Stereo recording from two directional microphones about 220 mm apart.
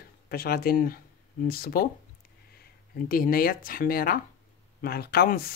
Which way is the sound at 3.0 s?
40° left (ahead or behind).